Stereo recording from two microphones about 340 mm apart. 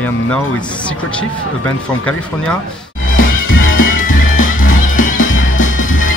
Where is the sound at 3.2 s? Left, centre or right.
Left.